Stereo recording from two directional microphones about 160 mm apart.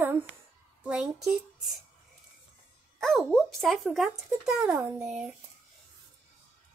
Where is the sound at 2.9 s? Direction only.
Centre (ahead or behind).